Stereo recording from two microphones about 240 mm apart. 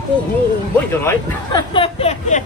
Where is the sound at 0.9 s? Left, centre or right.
Centre.